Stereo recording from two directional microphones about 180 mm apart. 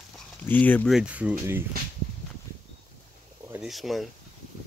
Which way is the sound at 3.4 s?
10° right (ahead or behind).